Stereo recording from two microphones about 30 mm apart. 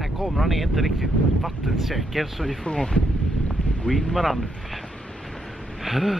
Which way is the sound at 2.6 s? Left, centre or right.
Left.